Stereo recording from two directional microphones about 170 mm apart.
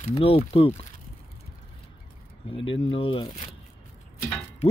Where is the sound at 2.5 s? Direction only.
30° left (ahead or behind).